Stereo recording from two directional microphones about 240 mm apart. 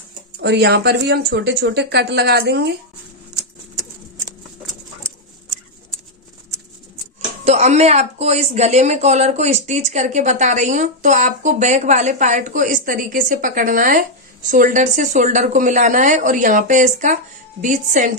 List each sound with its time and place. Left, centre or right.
0.4 s speech: right
7.4 s speech: right